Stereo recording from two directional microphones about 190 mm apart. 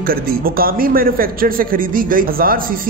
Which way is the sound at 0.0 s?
50° right (ahead or behind).